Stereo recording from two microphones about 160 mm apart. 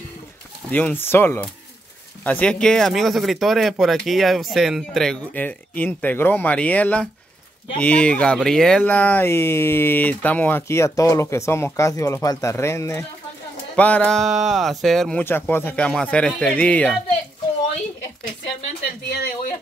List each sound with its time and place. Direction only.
0.7 s speech: 10° left (ahead or behind)
19.0 s speech: 90° left